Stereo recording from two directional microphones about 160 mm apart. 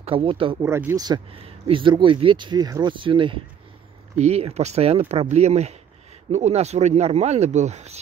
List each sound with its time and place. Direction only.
0.0 s speech: 35° right (ahead or behind)
0.6 s speech: 15° right (ahead or behind)
1.0 s speech: 30° right (ahead or behind)